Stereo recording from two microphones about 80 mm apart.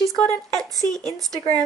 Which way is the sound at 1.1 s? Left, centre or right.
Right.